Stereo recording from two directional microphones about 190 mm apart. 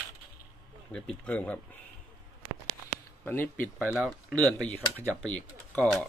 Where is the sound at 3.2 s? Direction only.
10° left (ahead or behind).